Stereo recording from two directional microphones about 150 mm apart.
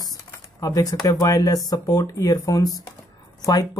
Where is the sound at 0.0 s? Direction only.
25° left (ahead or behind).